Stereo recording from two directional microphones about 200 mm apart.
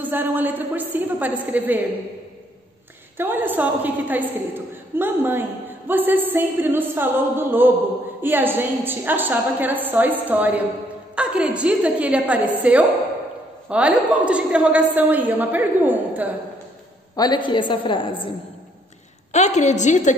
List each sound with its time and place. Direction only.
0.0 s a woman's voice: 10° right (ahead or behind)
3.2 s a woman's voice: 10° right (ahead or behind)
17.1 s a woman's voice: 20° left (ahead or behind)
19.3 s a woman's voice: 35° left (ahead or behind)